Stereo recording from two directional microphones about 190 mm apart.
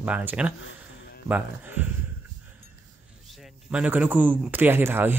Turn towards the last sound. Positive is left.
turn(degrees=-10)  # may be behind; listen again after turning